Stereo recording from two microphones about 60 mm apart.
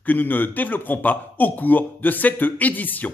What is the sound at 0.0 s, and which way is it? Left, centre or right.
A man's voice, left.